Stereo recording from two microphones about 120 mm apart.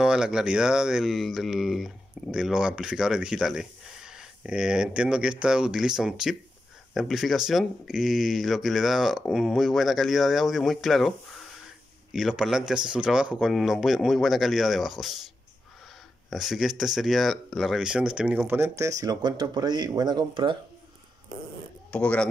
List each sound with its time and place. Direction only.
0.0 s speech: 5° right (ahead or behind)
16.3 s speech: 5° right (ahead or behind)
18.6 s speech: 25° right (ahead or behind)
21.9 s speech: 10° left (ahead or behind)